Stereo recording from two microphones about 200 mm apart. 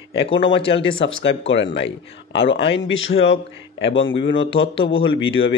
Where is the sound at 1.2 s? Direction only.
65° left (ahead or behind).